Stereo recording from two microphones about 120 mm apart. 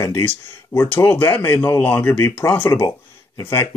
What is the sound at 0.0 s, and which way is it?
Speech, 20° left (ahead or behind).